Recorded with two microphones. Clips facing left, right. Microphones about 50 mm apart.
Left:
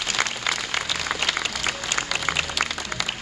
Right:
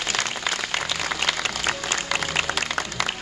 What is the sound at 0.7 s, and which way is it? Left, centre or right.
Applause, centre.